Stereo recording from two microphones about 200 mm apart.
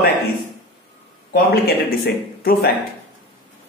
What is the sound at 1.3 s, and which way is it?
A man's voice, 50° left (ahead or behind).